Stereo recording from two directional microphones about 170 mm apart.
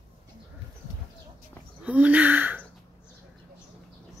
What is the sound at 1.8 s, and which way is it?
Speech, 10° right (ahead or behind).